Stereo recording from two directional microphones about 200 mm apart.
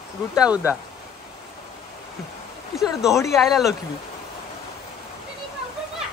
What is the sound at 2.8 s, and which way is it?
Speech, centre (ahead or behind).